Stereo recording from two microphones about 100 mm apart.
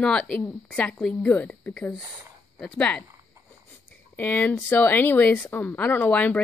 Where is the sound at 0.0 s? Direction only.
10° left (ahead or behind).